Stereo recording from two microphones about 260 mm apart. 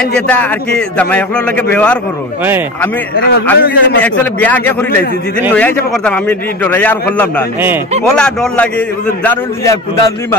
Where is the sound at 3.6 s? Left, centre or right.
Left.